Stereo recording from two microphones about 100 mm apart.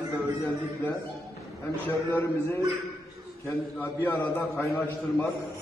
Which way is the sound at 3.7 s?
20° left (ahead or behind).